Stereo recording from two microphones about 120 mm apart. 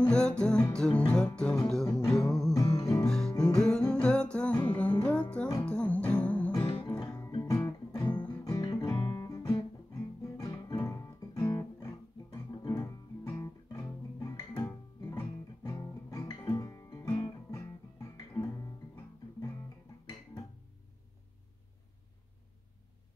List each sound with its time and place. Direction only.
0.0 s music: 10° left (ahead or behind)
2.5 s music: 30° left (ahead or behind)
3.1 s music: 5° left (ahead or behind)
6.5 s music: 40° left (ahead or behind)
7.2 s music: 25° left (ahead or behind)
9.1 s guitar: 25° left (ahead or behind)
10.7 s guitar: 25° left (ahead or behind)
12.6 s music: 25° left (ahead or behind)